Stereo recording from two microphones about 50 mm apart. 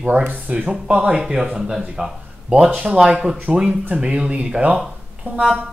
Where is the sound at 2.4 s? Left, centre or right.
Right.